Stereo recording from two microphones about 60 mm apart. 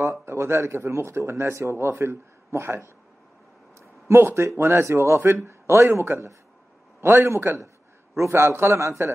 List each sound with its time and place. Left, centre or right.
0.0 s speech: right
4.1 s a man's voice: right